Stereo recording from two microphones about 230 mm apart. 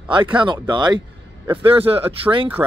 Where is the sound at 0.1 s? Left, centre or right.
Right.